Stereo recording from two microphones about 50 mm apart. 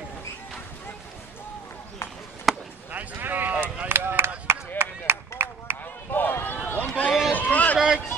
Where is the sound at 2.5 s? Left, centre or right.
Centre.